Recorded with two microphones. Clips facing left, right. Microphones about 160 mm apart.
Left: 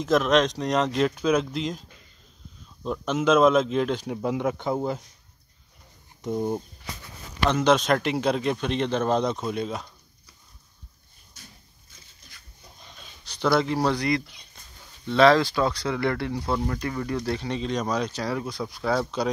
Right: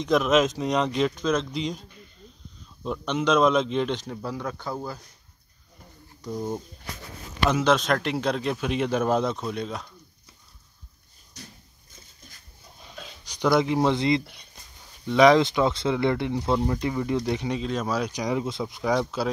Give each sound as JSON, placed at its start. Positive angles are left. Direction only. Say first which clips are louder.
{"t": 0.0, "sound": "speech", "louder": "even", "side_deg": 0}
{"t": 6.2, "sound": "speech", "louder": "left 4 dB", "side_deg": 20}
{"t": 7.4, "sound": "speech", "louder": "left 1 dB", "side_deg": 0}
{"t": 13.2, "sound": "speech", "louder": "right 1 dB", "side_deg": -15}
{"t": 17.6, "sound": "speech", "louder": "even", "side_deg": -5}
{"t": 19.0, "sound": "speech", "louder": "left 1 dB", "side_deg": -5}